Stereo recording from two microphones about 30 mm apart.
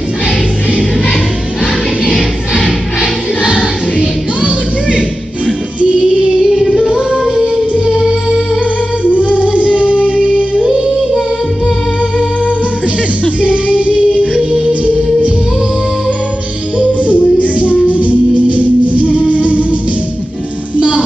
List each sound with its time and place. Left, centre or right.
3.0 s choir: right
4.0 s music: right
5.8 s music: right
7.0 s music: right
9.0 s music: left
9.5 s music: right
10.1 s music: left
10.7 s music: right
13.9 s music: right
17.1 s music: left
17.9 s music: right
19.0 s music: left
19.4 s music: right